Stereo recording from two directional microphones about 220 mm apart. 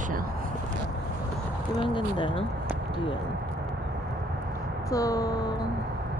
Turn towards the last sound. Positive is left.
turn(degrees=15)  # may be behind; listen again after turning